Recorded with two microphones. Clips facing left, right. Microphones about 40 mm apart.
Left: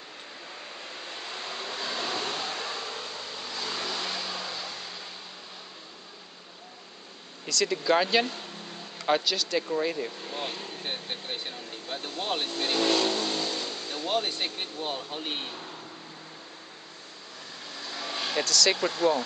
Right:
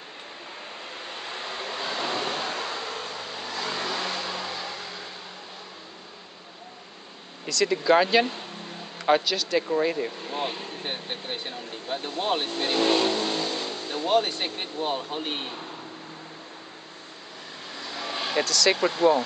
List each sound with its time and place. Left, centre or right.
0.9 s waves: centre
7.4 s speech: centre
17.7 s vehicle: centre